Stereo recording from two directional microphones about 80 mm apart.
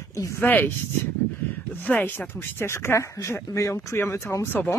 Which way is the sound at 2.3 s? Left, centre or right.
Left.